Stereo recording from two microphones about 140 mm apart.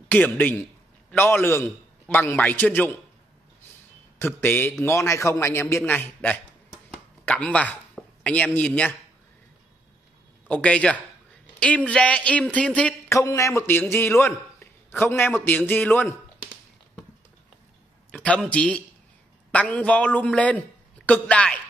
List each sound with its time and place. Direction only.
0.1 s a man's voice: 10° left (ahead or behind)
4.4 s a man's voice: 15° left (ahead or behind)
10.5 s a man's voice: 10° left (ahead or behind)
13.1 s a man's voice: 20° left (ahead or behind)
18.1 s a man's voice: 10° left (ahead or behind)